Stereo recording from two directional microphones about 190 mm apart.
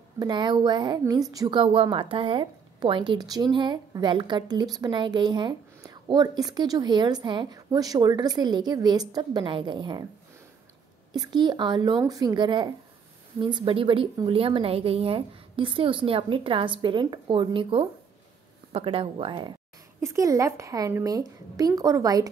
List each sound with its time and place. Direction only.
0.2 s a woman's voice: 25° right (ahead or behind)
11.1 s a woman's voice: 25° right (ahead or behind)
20.0 s a woman's voice: 15° right (ahead or behind)